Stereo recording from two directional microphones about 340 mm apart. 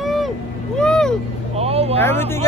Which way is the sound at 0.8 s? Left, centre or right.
Centre.